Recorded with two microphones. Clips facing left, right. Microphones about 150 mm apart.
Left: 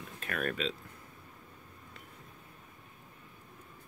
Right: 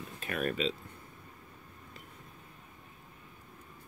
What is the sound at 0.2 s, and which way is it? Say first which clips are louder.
Speech: right 2 dB; 5° right (ahead or behind).